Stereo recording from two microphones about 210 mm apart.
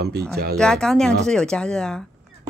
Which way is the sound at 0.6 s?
5° left (ahead or behind).